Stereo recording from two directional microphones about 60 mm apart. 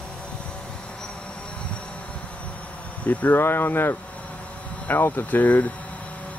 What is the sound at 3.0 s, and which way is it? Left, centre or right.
Speech, left.